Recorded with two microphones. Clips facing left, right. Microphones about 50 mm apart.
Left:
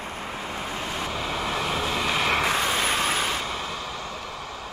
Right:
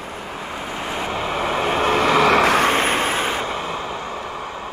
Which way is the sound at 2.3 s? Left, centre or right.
Right.